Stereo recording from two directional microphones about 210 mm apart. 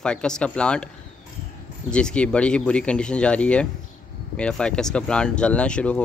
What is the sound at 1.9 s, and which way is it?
Speech, 5° left (ahead or behind).